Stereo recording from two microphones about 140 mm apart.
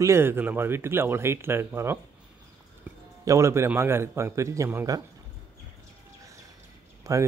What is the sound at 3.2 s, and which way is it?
A man's voice, 20° right (ahead or behind).